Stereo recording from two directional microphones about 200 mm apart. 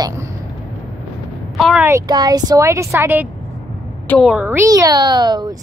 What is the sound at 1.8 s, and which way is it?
Speech, 15° right (ahead or behind).